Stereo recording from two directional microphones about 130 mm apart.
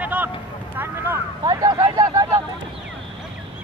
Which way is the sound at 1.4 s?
35° right (ahead or behind).